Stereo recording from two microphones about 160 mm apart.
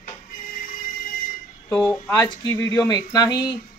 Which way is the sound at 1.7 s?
15° left (ahead or behind).